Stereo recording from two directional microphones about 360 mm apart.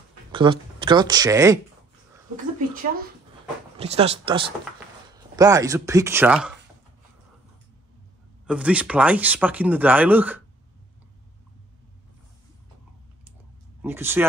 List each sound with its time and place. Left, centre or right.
0.3 s speech: centre
3.7 s speech: centre
8.5 s speech: centre
13.8 s speech: centre